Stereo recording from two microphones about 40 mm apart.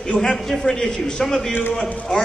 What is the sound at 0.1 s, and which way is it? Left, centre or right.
Speech, left.